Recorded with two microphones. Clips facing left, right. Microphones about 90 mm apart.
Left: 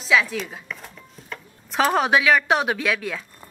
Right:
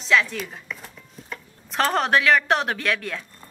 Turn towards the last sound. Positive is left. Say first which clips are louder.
# left 1 dB
turn(degrees=5)  # may be behind; listen again after turning